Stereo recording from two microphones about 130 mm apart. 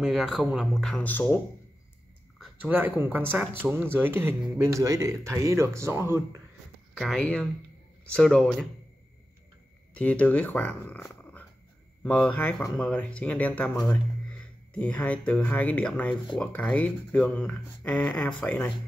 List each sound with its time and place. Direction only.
0.0 s speech: centre (ahead or behind)
2.4 s a sound: 15° right (ahead or behind)
3.0 s speech: 15° right (ahead or behind)
7.0 s speech: 5° left (ahead or behind)
9.9 s speech: 10° left (ahead or behind)
12.0 s speech: 10° left (ahead or behind)